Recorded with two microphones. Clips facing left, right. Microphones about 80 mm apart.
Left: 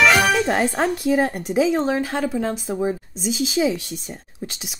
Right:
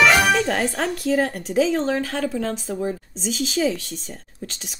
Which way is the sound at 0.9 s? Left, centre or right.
Centre.